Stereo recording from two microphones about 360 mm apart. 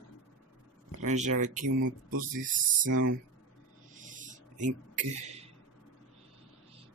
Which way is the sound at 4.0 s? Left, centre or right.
Right.